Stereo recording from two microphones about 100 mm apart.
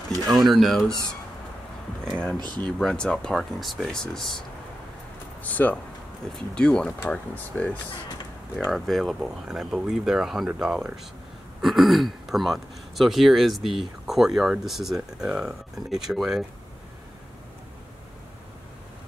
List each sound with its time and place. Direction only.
0.5 s speech: centre (ahead or behind)
2.3 s speech: 45° right (ahead or behind)
2.8 s speech: 10° left (ahead or behind)
5.4 s speech: 15° left (ahead or behind)
8.6 s speech: centre (ahead or behind)